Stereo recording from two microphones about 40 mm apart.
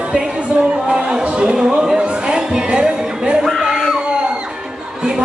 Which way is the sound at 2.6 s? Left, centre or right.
Right.